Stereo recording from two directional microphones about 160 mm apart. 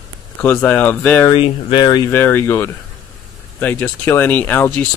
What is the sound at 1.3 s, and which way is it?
Speech, 30° left (ahead or behind).